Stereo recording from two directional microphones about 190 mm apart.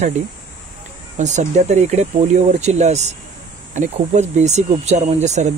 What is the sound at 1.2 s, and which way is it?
Speech, 40° right (ahead or behind).